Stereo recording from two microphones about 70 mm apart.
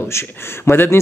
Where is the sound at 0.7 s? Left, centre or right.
Left.